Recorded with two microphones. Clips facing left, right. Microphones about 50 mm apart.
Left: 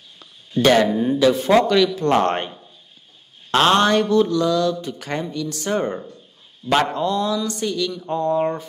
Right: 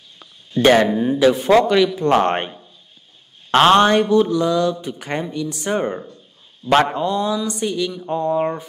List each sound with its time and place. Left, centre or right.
0.2 s a sound: centre
0.9 s speech: centre
1.2 s speech: right
3.5 s speech: right